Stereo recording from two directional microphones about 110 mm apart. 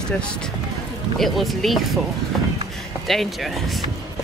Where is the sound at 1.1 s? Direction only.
Centre (ahead or behind).